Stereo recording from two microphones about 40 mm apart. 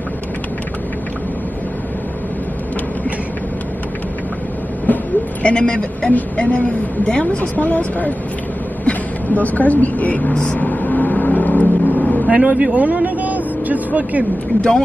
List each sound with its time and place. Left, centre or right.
4.9 s a sound: left
5.4 s a man's voice: left
7.5 s speech: left
10.3 s a man's voice: left
10.6 s vehicle: left
12.3 s speech: right
12.7 s vehicle: right